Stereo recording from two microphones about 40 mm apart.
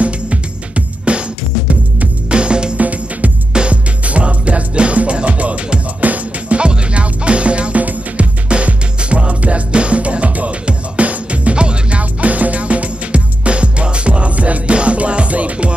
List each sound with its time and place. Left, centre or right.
0.0 s music: right
2.2 s music: right
2.8 s music: right
6.6 s music: right